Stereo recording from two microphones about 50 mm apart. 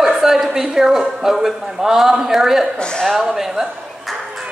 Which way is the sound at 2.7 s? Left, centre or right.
Centre.